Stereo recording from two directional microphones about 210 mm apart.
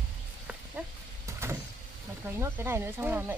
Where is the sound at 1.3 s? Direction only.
15° right (ahead or behind).